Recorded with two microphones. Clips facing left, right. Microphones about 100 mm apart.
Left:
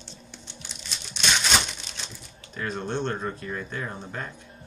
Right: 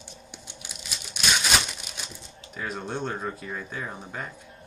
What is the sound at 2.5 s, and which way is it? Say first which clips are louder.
Speech: left 2 dB; 5° right (ahead or behind).